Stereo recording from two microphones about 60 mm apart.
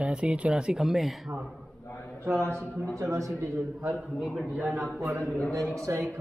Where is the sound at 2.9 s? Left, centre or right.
Right.